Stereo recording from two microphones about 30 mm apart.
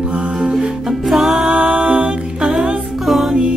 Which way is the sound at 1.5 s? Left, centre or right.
Right.